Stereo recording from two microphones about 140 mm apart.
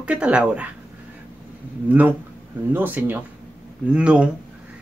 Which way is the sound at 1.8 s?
10° right (ahead or behind).